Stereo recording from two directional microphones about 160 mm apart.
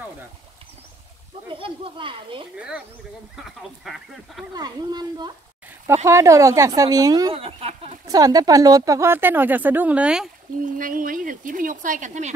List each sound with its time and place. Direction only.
1.5 s a child's voice: 35° right (ahead or behind)
2.5 s speech: 5° right (ahead or behind)
4.6 s speech: 25° right (ahead or behind)
7.3 s speech: 35° right (ahead or behind)
8.1 s speech: 25° right (ahead or behind); by 10.3 s 5° right (ahead or behind)
10.6 s speech: 55° right (ahead or behind)